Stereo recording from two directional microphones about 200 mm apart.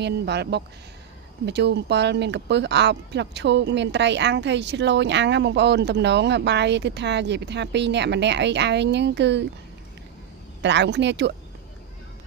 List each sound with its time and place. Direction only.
0.0 s speech: 55° right (ahead or behind)
10.6 s speech: 60° right (ahead or behind)